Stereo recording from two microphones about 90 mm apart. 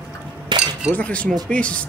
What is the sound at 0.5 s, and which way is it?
Chink, 60° right (ahead or behind).